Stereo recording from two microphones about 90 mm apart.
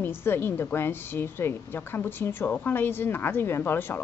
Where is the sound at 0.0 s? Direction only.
25° left (ahead or behind).